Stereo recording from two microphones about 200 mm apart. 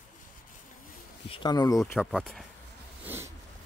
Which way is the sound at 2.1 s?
Centre (ahead or behind).